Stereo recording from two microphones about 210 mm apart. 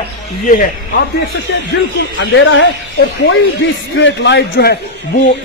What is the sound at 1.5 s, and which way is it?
A man's voice, 55° left (ahead or behind).